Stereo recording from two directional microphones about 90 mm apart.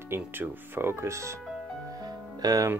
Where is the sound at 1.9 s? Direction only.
45° right (ahead or behind).